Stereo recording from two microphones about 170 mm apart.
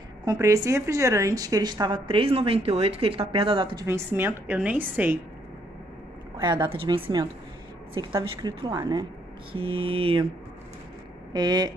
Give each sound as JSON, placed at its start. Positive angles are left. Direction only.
{"t": 0.2, "sound": "a woman's voice", "side_deg": -20}
{"t": 3.8, "sound": "a woman's voice", "side_deg": -15}
{"t": 6.4, "sound": "a woman's voice", "side_deg": -25}
{"t": 9.5, "sound": "mantra", "side_deg": -35}
{"t": 11.3, "sound": "a woman's voice", "side_deg": -25}